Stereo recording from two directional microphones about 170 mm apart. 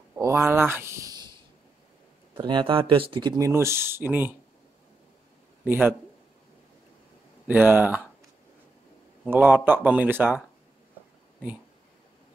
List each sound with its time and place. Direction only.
0.1 s speech: 15° right (ahead or behind)
2.3 s speech: 30° right (ahead or behind); by 4.3 s 10° right (ahead or behind)
5.7 s speech: 10° right (ahead or behind)
7.4 s speech: 10° right (ahead or behind)
9.2 s speech: 10° right (ahead or behind)